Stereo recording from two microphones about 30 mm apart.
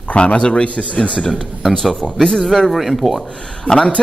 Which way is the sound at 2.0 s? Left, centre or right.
Centre.